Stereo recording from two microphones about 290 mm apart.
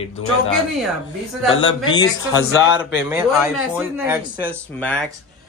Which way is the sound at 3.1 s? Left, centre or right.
Centre.